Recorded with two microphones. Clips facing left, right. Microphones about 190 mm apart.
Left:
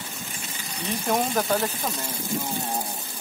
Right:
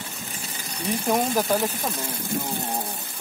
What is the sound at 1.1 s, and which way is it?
Speech, 5° right (ahead or behind).